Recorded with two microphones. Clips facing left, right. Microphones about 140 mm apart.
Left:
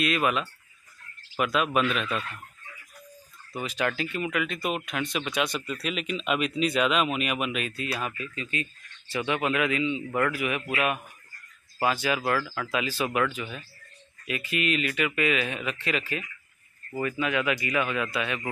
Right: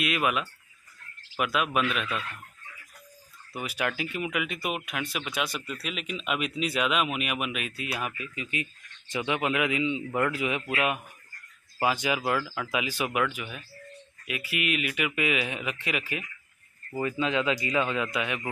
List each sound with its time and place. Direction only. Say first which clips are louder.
0.0 s speech: left 2 dB; 10° right (ahead or behind)
3.5 s speech: left 2 dB; 10° right (ahead or behind)
11.8 s speech: left 1 dB; 15° right (ahead or behind)